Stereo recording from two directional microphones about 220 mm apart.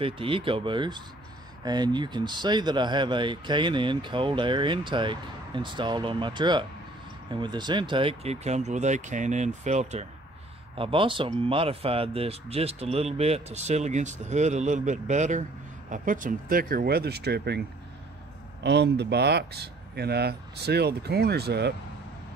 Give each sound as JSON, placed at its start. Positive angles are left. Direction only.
{"t": 0.0, "sound": "speech", "side_deg": -25}